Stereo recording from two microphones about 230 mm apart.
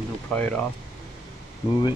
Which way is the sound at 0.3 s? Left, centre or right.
Centre.